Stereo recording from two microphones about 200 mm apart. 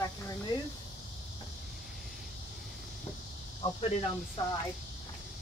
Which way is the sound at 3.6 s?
25° left (ahead or behind).